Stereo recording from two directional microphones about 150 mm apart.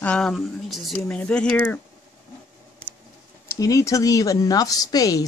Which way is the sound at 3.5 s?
20° left (ahead or behind).